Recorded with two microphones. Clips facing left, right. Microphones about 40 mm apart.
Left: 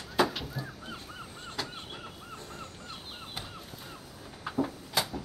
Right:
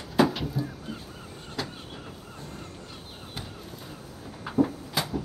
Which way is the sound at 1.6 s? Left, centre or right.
Centre.